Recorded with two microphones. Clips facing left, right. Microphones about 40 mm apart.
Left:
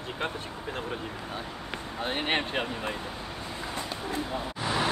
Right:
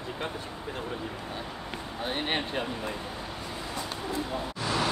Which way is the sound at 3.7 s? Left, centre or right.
Left.